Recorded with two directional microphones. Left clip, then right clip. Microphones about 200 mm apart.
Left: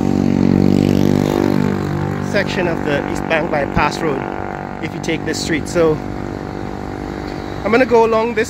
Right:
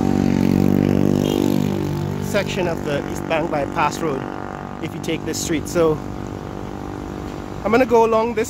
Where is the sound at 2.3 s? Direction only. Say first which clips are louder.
Left 3 dB; 10° right (ahead or behind).